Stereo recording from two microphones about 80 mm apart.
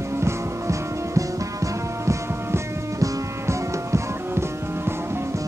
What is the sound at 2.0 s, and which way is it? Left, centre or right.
Music, right.